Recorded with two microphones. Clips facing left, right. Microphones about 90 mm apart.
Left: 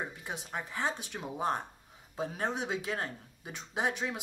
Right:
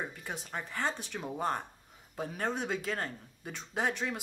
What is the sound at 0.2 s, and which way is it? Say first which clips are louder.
Speech: left 1 dB; 20° left (ahead or behind).